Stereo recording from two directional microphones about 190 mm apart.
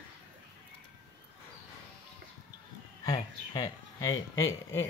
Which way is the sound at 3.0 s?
20° left (ahead or behind).